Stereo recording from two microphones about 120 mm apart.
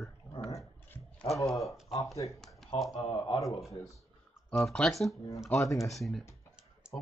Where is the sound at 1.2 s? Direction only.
50° left (ahead or behind).